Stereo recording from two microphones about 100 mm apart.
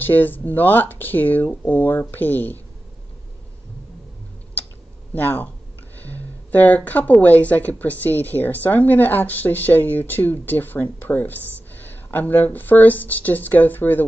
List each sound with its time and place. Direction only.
0.0 s speech: 20° left (ahead or behind)
5.1 s a woman's voice: 15° left (ahead or behind)